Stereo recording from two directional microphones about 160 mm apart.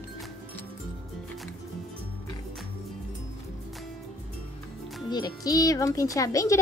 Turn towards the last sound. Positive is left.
turn(degrees=20)  # may be behind; listen again after turning